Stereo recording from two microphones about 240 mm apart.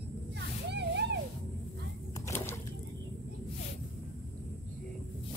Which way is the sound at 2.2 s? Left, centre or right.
Centre.